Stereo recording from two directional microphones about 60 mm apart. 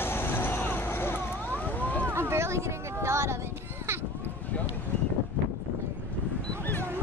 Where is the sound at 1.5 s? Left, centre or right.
Left.